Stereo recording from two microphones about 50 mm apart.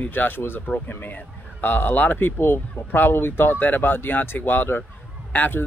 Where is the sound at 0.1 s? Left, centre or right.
Left.